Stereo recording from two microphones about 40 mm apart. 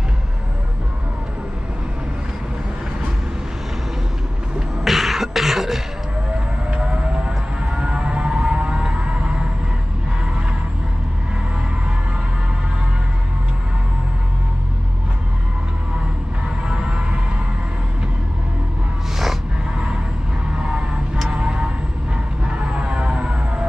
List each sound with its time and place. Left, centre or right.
4.8 s beatboxing: centre
6.7 s siren: right
16.6 s music: right
21.4 s tick-tock: right
22.4 s music: right